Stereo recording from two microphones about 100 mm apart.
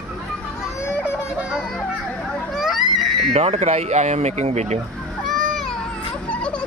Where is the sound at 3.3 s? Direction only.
90° right.